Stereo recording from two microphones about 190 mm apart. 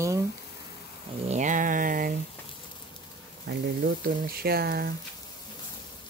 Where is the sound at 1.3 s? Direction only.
40° right (ahead or behind).